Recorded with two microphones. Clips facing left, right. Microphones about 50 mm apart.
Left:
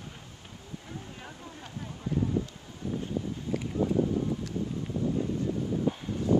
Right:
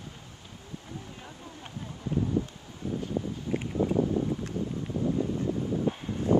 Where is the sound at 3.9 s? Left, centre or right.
Centre.